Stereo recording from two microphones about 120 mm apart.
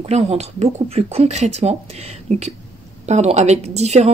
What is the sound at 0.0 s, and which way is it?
Speech, 60° right (ahead or behind).